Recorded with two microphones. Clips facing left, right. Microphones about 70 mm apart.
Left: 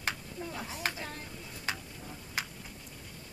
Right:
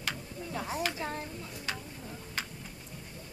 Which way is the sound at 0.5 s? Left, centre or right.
Right.